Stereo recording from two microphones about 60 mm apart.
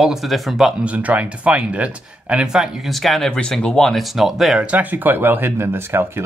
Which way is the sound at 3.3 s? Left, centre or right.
Centre.